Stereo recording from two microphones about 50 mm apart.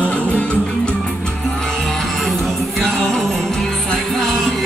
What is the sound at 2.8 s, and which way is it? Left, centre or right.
Music, centre.